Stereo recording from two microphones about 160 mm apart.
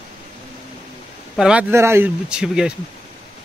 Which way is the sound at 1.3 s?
5° right (ahead or behind).